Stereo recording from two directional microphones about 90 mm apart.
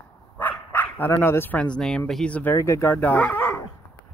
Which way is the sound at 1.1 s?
30° left (ahead or behind).